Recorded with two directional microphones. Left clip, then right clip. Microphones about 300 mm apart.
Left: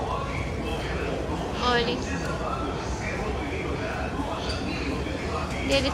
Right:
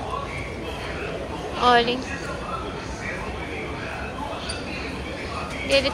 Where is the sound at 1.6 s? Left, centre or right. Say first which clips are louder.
Right 7 dB; centre.